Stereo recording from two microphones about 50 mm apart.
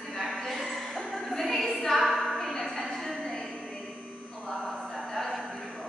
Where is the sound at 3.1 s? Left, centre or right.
Centre.